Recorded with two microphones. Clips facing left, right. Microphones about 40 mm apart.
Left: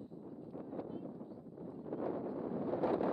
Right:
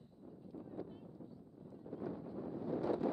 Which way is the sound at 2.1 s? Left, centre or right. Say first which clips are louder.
Left 5 dB; left.